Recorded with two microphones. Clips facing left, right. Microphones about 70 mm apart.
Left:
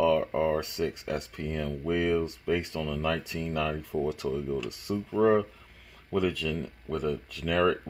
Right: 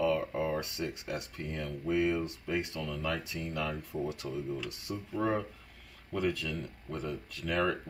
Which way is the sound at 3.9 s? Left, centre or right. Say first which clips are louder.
Left 8 dB; left.